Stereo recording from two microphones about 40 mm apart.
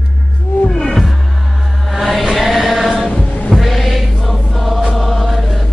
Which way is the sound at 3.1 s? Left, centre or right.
Left.